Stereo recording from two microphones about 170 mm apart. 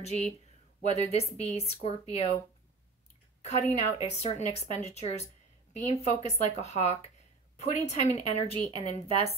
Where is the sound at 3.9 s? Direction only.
40° left (ahead or behind).